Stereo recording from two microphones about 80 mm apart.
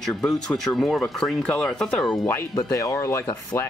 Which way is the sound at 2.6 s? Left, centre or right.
Left.